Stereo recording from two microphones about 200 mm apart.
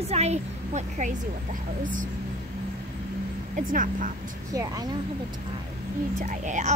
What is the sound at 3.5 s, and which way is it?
Speech, 40° right (ahead or behind).